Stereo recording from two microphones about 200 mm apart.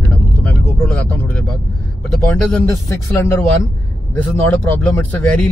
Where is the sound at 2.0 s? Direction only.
5° left (ahead or behind).